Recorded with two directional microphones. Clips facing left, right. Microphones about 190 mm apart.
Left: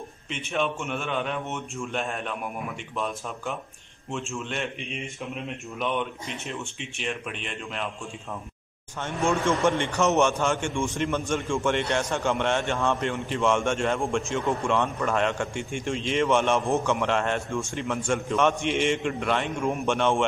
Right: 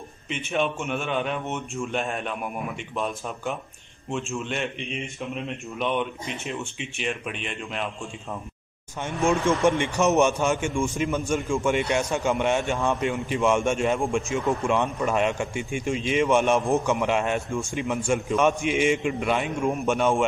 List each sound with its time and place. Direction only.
0.3 s speech: centre (ahead or behind)
4.1 s speech: centre (ahead or behind)
9.7 s a man's voice: 15° right (ahead or behind)
10.7 s a man's voice: centre (ahead or behind)